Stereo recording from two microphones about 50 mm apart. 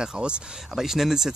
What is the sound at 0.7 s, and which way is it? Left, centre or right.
Speech, centre.